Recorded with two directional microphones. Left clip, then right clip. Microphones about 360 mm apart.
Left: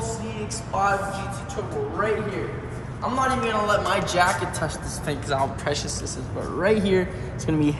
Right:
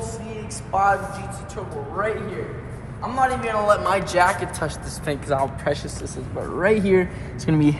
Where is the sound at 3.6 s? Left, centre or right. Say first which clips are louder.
Right 3 dB; right.